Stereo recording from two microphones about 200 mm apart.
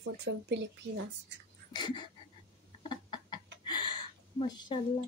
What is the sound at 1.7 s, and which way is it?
Speech, 20° left (ahead or behind).